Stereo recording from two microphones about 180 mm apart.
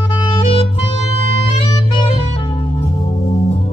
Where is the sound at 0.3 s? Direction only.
30° left (ahead or behind).